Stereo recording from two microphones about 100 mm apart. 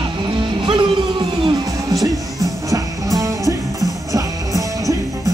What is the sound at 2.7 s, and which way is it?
Music, 35° right (ahead or behind).